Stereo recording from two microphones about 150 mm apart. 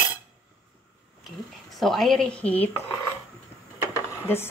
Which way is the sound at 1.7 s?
Centre (ahead or behind).